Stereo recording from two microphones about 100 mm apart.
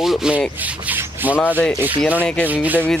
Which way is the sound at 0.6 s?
15° right (ahead or behind).